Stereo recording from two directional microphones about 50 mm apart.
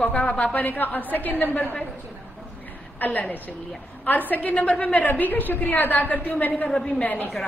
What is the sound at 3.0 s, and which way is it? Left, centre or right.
A woman's voice, left.